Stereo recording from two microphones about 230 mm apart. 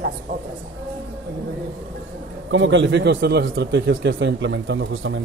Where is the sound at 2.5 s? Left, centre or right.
Right.